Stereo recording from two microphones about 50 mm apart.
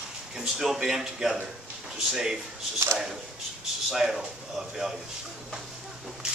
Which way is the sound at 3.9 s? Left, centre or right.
Centre.